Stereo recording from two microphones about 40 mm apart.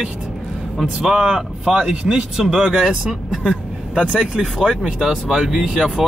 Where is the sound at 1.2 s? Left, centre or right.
Centre.